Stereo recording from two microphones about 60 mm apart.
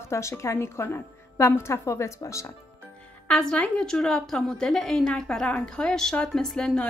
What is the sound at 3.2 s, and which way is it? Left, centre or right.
A woman's voice, centre.